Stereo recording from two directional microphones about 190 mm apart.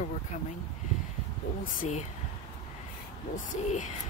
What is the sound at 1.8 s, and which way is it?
Speech, 40° left (ahead or behind).